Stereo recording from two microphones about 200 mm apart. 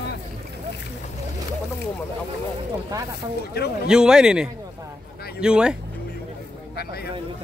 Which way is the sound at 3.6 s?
50° left (ahead or behind).